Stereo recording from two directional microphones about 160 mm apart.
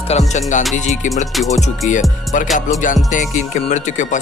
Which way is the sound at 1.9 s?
50° left (ahead or behind).